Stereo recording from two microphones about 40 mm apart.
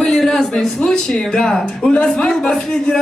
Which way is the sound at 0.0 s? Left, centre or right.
Centre.